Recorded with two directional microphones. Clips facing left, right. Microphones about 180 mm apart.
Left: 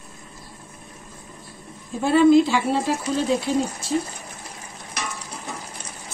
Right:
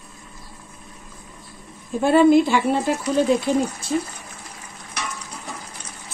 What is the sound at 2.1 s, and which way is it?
Speech, 55° right (ahead or behind).